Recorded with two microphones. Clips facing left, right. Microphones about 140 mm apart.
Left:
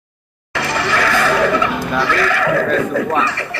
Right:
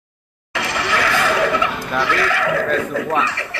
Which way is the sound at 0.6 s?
15° right (ahead or behind).